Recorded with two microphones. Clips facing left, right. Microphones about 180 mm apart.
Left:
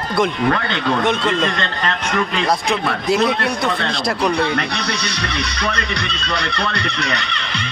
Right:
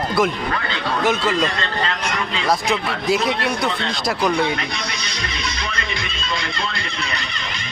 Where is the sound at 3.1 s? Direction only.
Centre (ahead or behind).